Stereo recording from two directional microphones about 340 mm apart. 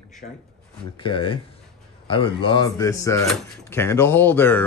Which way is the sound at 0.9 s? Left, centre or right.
Centre.